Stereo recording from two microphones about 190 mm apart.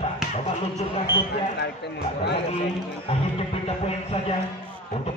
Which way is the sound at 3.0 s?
30° left (ahead or behind).